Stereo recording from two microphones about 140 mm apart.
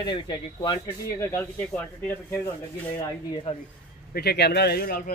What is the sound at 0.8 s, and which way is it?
Speech, 15° left (ahead or behind).